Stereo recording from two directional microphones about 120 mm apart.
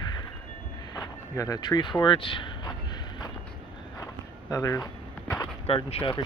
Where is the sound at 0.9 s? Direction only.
30° left (ahead or behind).